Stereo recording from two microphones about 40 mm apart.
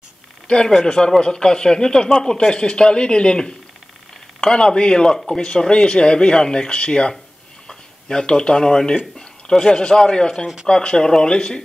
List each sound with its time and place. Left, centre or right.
0.7 s speech: centre